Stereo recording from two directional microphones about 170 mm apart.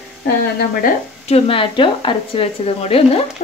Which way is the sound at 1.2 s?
35° left (ahead or behind).